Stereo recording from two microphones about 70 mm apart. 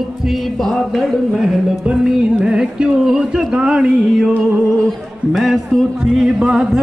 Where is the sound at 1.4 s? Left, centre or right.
Centre.